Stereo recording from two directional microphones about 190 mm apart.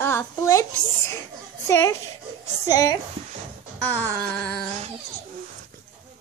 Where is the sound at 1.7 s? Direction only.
15° left (ahead or behind).